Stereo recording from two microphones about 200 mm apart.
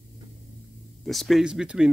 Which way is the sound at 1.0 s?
Centre (ahead or behind).